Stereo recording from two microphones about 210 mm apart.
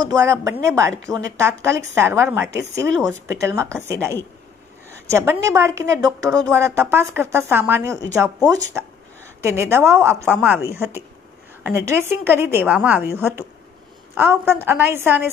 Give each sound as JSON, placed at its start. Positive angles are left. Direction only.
{"t": 0.0, "sound": "a woman's voice", "side_deg": -15}
{"t": 5.1, "sound": "a woman's voice", "side_deg": -10}